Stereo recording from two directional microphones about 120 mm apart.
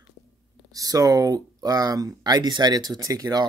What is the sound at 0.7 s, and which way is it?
Speech, 30° right (ahead or behind).